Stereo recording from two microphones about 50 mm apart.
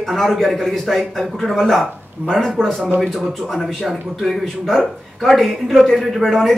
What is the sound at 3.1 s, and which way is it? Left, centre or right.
A man's voice, centre.